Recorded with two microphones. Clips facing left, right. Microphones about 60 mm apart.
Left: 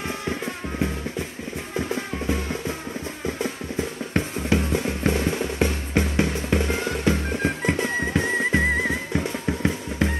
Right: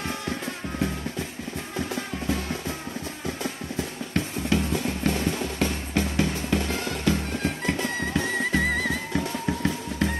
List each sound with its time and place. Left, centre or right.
0.2 s music: left
4.1 s drum: left